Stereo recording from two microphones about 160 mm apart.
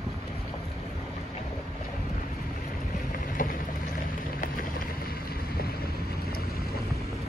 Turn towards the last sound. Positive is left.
turn(degrees=70)  # may be behind; listen again after turning